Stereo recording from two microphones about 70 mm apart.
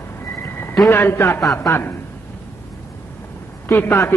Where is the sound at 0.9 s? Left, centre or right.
Left.